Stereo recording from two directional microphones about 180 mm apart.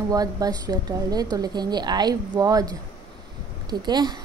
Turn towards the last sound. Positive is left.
turn(degrees=-25)  # may be behind; listen again after turning